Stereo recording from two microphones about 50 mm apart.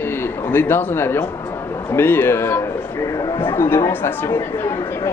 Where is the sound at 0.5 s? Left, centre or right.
Left.